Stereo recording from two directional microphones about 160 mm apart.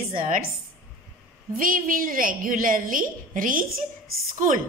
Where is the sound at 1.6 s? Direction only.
60° right (ahead or behind).